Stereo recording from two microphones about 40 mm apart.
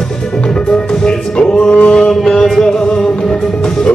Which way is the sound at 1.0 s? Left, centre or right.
Left.